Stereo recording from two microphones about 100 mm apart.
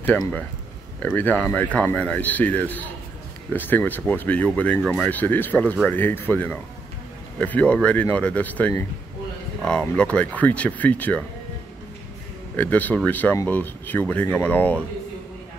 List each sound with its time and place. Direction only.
1.0 s speech: 15° left (ahead or behind)
12.5 s speech: 15° left (ahead or behind)